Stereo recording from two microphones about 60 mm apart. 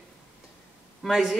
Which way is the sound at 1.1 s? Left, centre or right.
Centre.